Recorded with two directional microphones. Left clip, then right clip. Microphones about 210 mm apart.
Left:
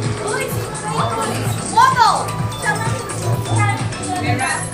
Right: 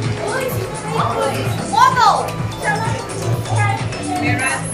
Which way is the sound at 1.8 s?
10° right (ahead or behind).